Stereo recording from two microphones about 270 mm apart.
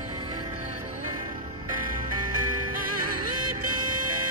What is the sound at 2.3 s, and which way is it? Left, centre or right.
Music, right.